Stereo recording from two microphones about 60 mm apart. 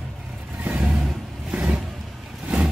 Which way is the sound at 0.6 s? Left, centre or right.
Right.